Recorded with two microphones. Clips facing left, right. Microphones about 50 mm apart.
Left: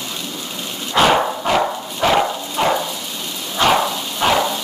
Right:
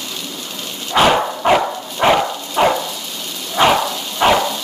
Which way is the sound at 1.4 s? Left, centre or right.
Right.